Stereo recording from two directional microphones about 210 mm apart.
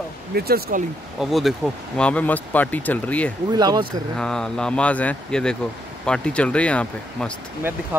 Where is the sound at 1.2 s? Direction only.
Centre (ahead or behind).